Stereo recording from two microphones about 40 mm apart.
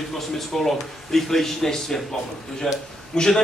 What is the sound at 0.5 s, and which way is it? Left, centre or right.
A man's voice, centre.